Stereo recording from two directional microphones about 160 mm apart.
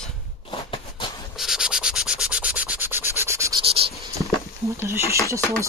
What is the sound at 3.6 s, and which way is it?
Scratch, 35° right (ahead or behind).